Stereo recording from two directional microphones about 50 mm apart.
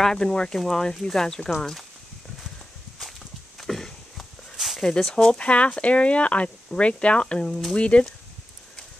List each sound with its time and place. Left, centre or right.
0.0 s speech: centre
3.5 s walk: centre
4.8 s speech: centre